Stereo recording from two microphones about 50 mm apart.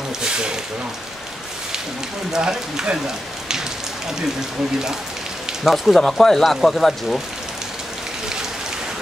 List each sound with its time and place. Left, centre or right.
0.2 s a sound: centre
2.3 s speech: centre
5.6 s speech: centre
5.9 s speech: centre